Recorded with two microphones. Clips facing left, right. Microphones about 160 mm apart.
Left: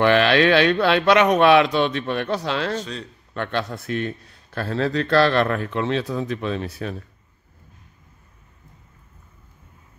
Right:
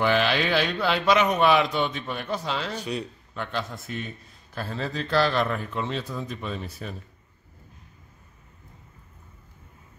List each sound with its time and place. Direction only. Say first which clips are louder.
0.0 s a man's voice: left 7 dB; 75° left (ahead or behind)
2.8 s a man's voice: right 2 dB; 15° right (ahead or behind)
3.3 s a man's voice: left 6 dB; 70° left (ahead or behind)